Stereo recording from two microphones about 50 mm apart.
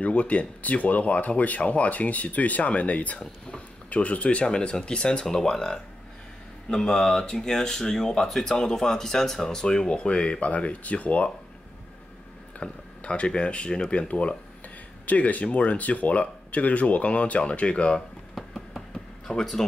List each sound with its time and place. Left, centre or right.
0.0 s speech: left
12.5 s speech: left
18.3 s a sound: centre
19.2 s speech: centre